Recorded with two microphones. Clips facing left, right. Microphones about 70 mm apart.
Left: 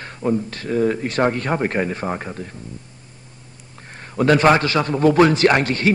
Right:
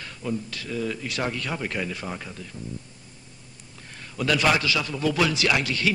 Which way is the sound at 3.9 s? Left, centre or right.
Left.